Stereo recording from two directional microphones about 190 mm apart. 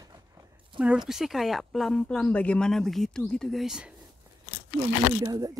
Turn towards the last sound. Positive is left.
turn(degrees=-20)  # may be behind; listen again after turning